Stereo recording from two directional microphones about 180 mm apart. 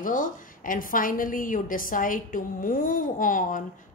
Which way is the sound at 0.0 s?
50° left (ahead or behind).